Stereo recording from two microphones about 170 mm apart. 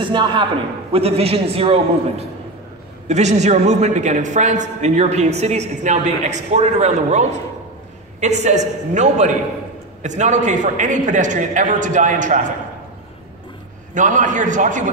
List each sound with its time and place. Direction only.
0.0 s a man's voice: 30° right (ahead or behind); by 12.4 s 45° right (ahead or behind)
13.9 s a man's voice: 50° right (ahead or behind)